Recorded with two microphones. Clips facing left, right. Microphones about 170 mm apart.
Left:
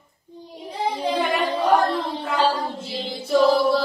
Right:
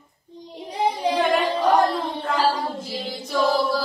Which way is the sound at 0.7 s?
15° right (ahead or behind).